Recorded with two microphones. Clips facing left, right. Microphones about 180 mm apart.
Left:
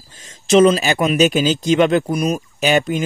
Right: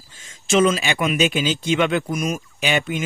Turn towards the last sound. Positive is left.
turn(degrees=40)  # may be behind; listen again after turning